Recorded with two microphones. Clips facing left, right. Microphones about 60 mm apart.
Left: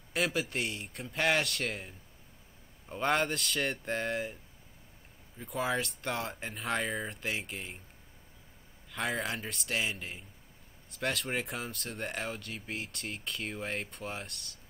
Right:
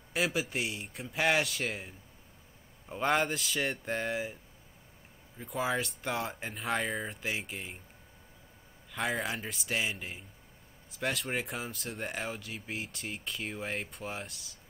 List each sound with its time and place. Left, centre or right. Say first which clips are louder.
0.1 s speech: even; centre
5.4 s speech: even; centre
8.9 s speech: right 1 dB; centre